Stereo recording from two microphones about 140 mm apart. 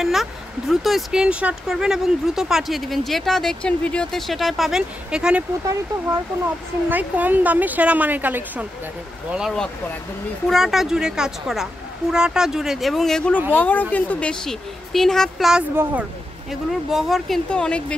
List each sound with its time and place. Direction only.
0.0 s speech: centre (ahead or behind)
6.9 s a woman's voice: 10° right (ahead or behind)
9.3 s speech: centre (ahead or behind)
15.7 s speech: 15° right (ahead or behind); by 17.9 s 5° left (ahead or behind)